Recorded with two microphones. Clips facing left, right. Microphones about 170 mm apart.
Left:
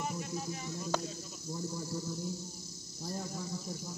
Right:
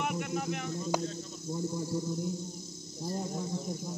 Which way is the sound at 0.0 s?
70° right (ahead or behind).